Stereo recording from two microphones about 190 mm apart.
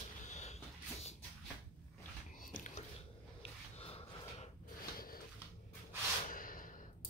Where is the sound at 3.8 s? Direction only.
30° left (ahead or behind).